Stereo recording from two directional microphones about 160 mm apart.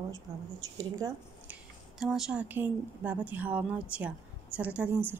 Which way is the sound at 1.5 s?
Centre (ahead or behind).